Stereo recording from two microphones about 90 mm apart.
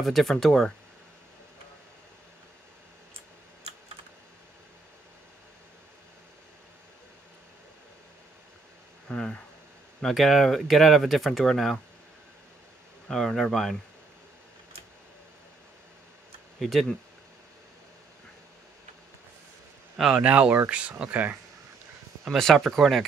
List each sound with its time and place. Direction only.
0.0 s speech: 5° left (ahead or behind)
9.1 s speech: 10° left (ahead or behind)
13.1 s speech: 5° left (ahead or behind)
16.5 s speech: centre (ahead or behind)
20.0 s speech: 10° right (ahead or behind)
22.2 s speech: centre (ahead or behind)